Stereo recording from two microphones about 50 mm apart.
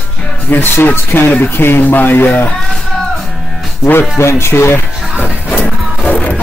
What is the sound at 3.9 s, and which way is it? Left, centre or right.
Music, left.